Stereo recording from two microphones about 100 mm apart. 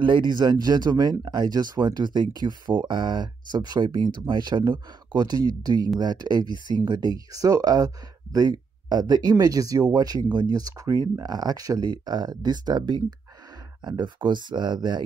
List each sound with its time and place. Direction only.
0.0 s speech: 50° right (ahead or behind)
6.4 s speech: 50° left (ahead or behind)
6.9 s speech: 45° right (ahead or behind)